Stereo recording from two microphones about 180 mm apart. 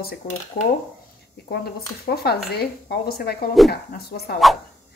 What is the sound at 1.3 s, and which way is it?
Speech, 65° left (ahead or behind).